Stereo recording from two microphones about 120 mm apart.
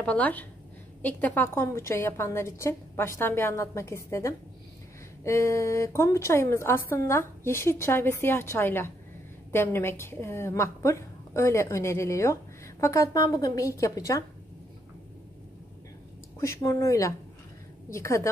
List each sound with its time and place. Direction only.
0.0 s a woman's voice: 10° left (ahead or behind); by 14.2 s 25° left (ahead or behind)
16.3 s a woman's voice: 25° left (ahead or behind)